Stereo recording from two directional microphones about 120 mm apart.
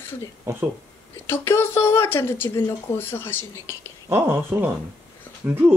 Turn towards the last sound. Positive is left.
turn(degrees=-15)  # may be behind; listen again after turning